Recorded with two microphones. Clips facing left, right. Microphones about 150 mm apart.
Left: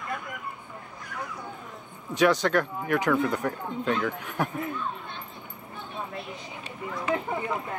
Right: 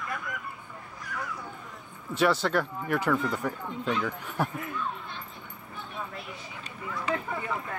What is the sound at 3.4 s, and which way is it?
Speech, 50° left (ahead or behind).